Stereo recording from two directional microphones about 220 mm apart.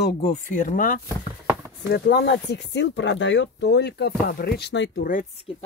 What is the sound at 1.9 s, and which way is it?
Speech, 50° left (ahead or behind).